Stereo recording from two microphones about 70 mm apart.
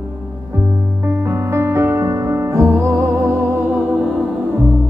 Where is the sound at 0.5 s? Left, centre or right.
Right.